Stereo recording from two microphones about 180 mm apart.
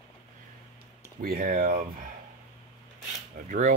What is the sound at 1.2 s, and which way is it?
Speech, 55° right (ahead or behind).